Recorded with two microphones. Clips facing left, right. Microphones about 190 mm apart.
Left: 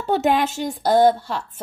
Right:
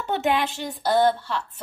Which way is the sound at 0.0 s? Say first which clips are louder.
Left 4 dB; 40° left (ahead or behind).